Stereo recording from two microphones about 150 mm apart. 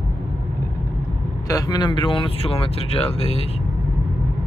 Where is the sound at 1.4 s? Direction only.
25° left (ahead or behind); by 3.5 s 40° left (ahead or behind).